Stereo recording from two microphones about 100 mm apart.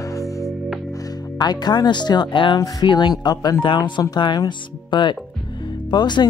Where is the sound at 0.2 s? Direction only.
Centre (ahead or behind).